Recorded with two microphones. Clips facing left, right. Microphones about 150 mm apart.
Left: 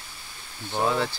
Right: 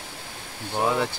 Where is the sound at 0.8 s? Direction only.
15° right (ahead or behind).